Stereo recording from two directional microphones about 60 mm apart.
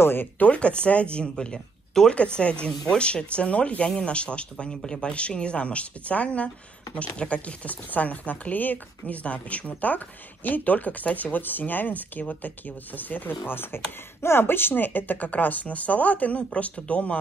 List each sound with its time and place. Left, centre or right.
0.0 s speech: left
0.5 s a woman's voice: centre